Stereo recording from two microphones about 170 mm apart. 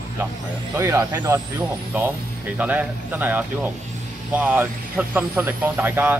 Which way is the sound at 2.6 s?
10° right (ahead or behind).